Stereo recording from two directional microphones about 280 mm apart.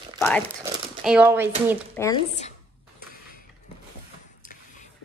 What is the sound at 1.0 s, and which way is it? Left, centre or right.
Speech, centre.